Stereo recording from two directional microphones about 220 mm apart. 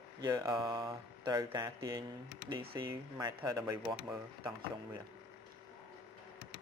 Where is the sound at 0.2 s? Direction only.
20° right (ahead or behind).